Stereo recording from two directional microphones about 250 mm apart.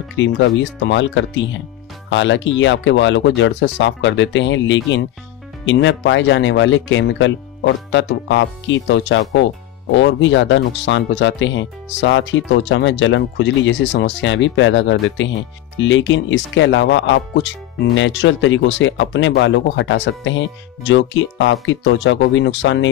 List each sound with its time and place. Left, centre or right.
0.1 s speech: left